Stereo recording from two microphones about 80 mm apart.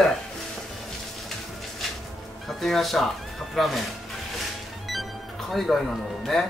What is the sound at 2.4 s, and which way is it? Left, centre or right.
Speech, centre.